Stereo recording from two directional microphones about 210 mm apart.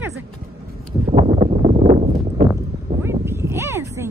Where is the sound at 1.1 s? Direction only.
30° right (ahead or behind).